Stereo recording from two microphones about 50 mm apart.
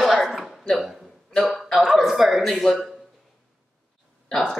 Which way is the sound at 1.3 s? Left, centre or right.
Centre.